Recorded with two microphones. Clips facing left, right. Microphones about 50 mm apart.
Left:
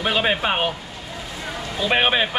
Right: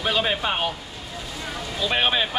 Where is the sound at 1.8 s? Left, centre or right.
Centre.